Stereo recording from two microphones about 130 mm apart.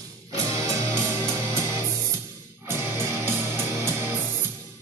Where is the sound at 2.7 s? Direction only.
20° right (ahead or behind).